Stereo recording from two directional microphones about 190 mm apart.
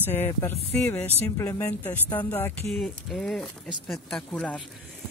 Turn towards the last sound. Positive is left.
turn(degrees=5)  # may be behind; listen again after turning